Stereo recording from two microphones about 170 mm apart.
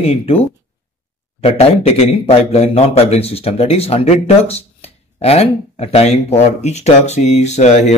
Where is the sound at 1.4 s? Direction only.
35° left (ahead or behind).